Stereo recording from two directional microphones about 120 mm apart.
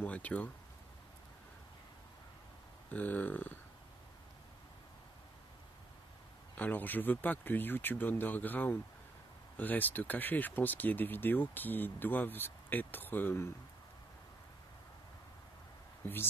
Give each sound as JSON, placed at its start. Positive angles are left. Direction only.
{"t": 0.0, "sound": "speech", "side_deg": 10}
{"t": 2.9, "sound": "speech", "side_deg": 15}
{"t": 6.5, "sound": "speech", "side_deg": 15}
{"t": 16.0, "sound": "speech", "side_deg": 15}